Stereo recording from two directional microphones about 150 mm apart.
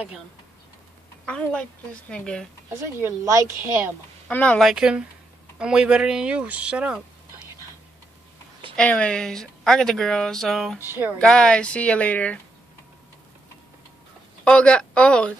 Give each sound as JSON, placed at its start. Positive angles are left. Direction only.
{"t": 1.2, "sound": "speech", "side_deg": 5}
{"t": 3.0, "sound": "speech", "side_deg": -20}
{"t": 4.3, "sound": "speech", "side_deg": 10}
{"t": 8.7, "sound": "speech", "side_deg": 5}
{"t": 10.8, "sound": "speech", "side_deg": -15}
{"t": 11.1, "sound": "speech", "side_deg": 5}
{"t": 14.4, "sound": "a woman's voice", "side_deg": 5}